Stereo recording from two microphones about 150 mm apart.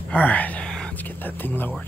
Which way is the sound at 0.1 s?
10° left (ahead or behind).